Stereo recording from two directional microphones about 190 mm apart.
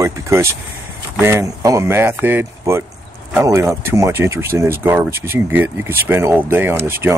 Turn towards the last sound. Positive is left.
turn(degrees=-10)  # may be behind; listen again after turning